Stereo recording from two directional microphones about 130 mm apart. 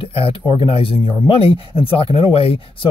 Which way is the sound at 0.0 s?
45° left (ahead or behind).